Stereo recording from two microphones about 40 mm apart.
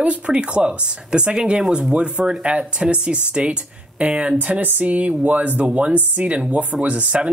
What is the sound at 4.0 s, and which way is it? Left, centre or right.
Speech, right.